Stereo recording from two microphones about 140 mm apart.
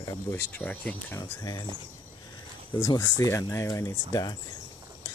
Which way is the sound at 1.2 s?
30° left (ahead or behind).